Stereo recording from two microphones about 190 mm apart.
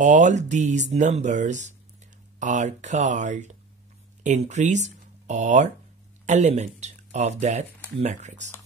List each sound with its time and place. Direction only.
0.0 s speech: 40° right (ahead or behind)